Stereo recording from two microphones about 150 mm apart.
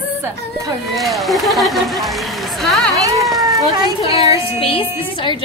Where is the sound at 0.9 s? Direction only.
Centre (ahead or behind).